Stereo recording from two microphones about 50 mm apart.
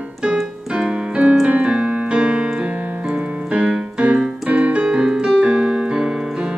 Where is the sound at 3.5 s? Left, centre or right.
Right.